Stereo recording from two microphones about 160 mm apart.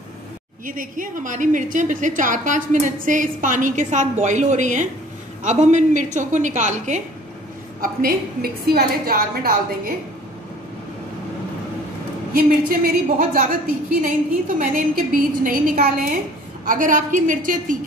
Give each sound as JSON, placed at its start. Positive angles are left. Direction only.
{"t": 0.7, "sound": "a woman's voice", "side_deg": -55}
{"t": 7.8, "sound": "a woman's voice", "side_deg": -70}
{"t": 12.4, "sound": "a woman's voice", "side_deg": -65}
{"t": 14.6, "sound": "a woman's voice", "side_deg": -60}